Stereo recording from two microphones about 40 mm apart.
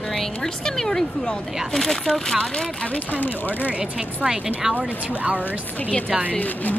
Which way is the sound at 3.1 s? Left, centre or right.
Left.